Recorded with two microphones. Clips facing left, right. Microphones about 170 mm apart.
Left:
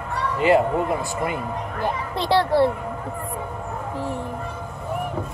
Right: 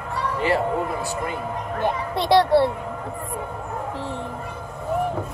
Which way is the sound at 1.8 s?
15° right (ahead or behind).